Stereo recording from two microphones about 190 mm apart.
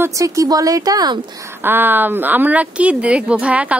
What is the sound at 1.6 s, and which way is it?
Speech, 10° right (ahead or behind).